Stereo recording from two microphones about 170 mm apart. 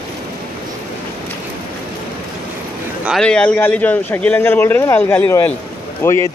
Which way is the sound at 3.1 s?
5° left (ahead or behind).